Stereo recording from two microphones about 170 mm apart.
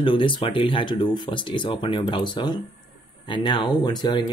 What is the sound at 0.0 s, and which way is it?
Speech, 30° left (ahead or behind).